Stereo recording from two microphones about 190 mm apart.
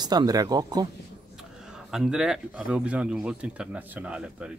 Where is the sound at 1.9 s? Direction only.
5° right (ahead or behind).